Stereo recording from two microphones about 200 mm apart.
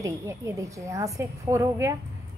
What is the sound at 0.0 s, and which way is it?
A woman's voice, 15° right (ahead or behind).